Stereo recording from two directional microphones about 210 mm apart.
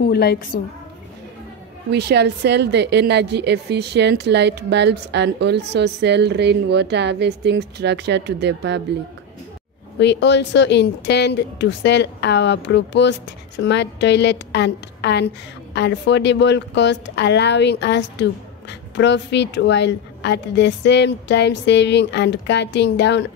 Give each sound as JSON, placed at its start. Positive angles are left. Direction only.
{"t": 0.0, "sound": "a woman's voice", "side_deg": 50}
{"t": 1.9, "sound": "a woman's voice", "side_deg": -50}
{"t": 9.9, "sound": "a woman's voice", "side_deg": 55}